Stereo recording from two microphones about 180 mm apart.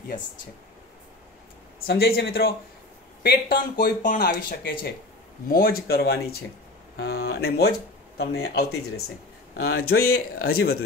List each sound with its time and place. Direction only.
1.9 s speech: 60° left (ahead or behind)
3.8 s speech: 45° left (ahead or behind)
4.2 s speech: 60° left (ahead or behind)